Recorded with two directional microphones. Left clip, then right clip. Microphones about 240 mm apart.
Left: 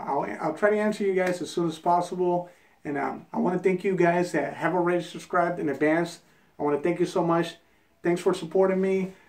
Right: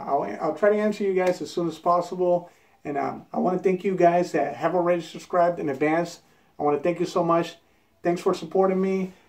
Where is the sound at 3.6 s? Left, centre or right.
Centre.